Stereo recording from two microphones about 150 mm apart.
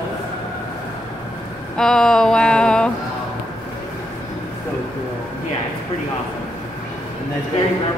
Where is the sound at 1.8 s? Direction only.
5° left (ahead or behind).